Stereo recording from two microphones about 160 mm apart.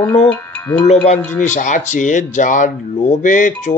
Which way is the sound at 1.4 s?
50° left (ahead or behind).